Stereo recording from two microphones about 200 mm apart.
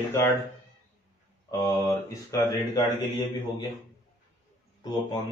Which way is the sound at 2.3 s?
20° left (ahead or behind).